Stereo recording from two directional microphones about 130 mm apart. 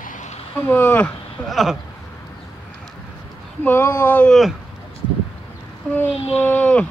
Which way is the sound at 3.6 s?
15° left (ahead or behind).